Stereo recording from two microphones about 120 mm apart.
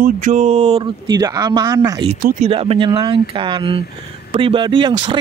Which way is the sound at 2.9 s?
40° right (ahead or behind).